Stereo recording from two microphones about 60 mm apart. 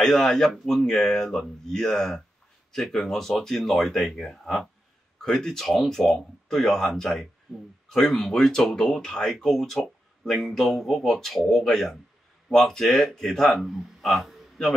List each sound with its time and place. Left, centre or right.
0.0 s speech: centre